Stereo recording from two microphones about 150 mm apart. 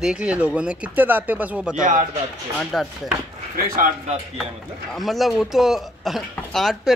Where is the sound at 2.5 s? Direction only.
Centre (ahead or behind).